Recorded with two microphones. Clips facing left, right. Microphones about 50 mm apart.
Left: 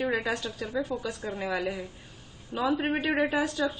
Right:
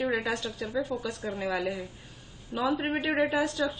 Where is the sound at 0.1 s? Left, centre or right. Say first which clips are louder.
Even; centre.